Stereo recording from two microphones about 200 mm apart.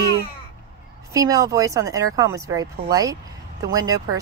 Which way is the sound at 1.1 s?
15° right (ahead or behind).